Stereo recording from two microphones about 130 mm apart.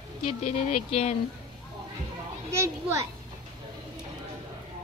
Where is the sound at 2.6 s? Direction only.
20° right (ahead or behind).